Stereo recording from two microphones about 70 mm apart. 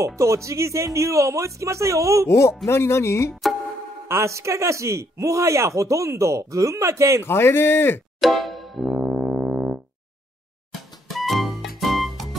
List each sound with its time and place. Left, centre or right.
0.0 s speech: right
2.2 s speech: left
4.1 s speech: right
7.2 s speech: left
8.2 s music: centre
8.9 s music: centre
11.1 s music: centre